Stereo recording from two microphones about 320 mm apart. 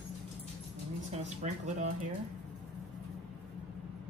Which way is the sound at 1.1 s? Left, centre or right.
Right.